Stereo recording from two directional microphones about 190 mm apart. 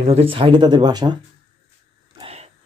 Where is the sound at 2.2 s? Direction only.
35° right (ahead or behind).